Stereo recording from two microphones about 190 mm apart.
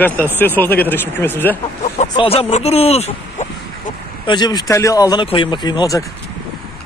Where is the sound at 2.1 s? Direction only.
30° left (ahead or behind).